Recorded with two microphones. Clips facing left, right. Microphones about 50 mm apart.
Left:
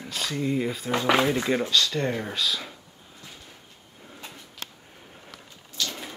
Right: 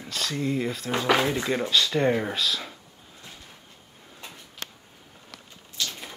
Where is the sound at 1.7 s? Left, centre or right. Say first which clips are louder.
Right 3 dB; centre.